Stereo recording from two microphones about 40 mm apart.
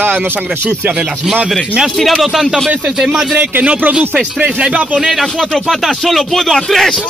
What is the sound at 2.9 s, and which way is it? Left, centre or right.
Speech, centre.